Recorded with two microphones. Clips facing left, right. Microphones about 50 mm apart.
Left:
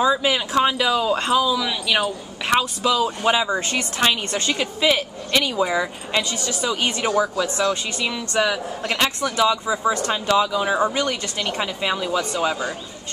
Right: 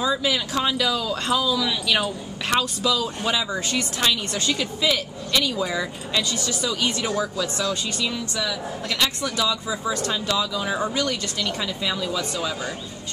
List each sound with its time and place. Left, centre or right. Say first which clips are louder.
0.0 s speech: left 4 dB; left
1.3 s speech: right 1 dB; centre
8.3 s speech: left 6 dB; left